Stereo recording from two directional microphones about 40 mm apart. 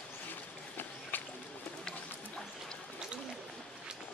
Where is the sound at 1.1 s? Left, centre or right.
Left.